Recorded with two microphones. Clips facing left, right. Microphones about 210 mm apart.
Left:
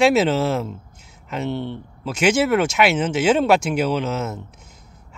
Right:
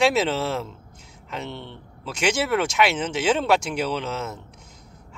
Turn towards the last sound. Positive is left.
turn(degrees=5)  # may be behind; listen again after turning